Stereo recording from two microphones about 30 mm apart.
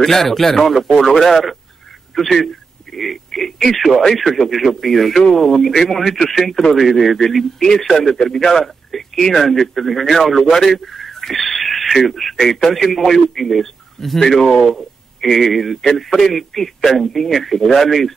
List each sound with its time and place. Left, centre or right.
0.0 s a man's voice: centre
14.4 s speech: centre